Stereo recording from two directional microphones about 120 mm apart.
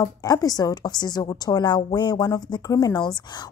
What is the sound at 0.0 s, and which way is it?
A woman's voice, 30° left (ahead or behind).